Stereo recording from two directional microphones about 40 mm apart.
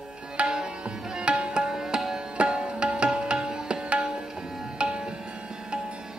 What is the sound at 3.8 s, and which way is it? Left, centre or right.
Tabla, right.